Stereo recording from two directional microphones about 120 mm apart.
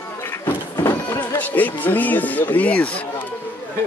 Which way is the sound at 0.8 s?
20° left (ahead or behind).